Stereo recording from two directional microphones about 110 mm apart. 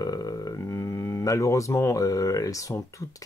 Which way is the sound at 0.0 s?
35° left (ahead or behind).